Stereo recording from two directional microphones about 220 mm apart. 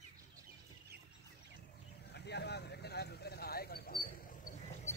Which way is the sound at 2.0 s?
50° left (ahead or behind).